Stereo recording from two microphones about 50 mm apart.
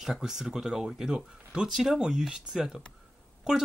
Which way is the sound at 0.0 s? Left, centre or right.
Centre.